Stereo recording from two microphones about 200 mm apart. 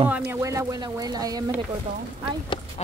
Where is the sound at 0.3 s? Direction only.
15° right (ahead or behind).